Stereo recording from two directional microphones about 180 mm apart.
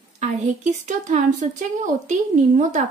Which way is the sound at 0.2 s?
40° right (ahead or behind).